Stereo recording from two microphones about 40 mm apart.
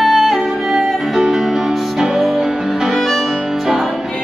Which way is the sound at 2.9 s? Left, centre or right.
Centre.